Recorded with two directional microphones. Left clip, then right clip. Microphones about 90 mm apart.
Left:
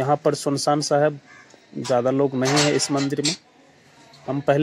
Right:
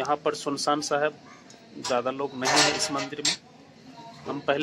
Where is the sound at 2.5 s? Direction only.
30° right (ahead or behind).